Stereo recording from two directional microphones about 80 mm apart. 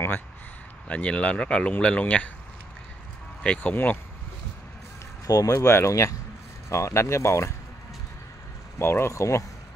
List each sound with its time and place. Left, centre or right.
0.8 s speech: centre
3.4 s speech: centre
5.2 s speech: left
8.7 s speech: left